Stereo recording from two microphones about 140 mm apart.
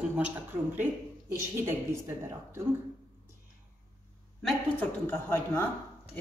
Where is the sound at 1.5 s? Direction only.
20° right (ahead or behind).